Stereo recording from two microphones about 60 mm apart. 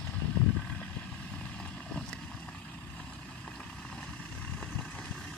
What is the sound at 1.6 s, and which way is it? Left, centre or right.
Vehicle, centre.